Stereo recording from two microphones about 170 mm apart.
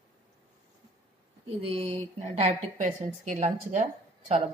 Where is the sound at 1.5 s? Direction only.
35° right (ahead or behind).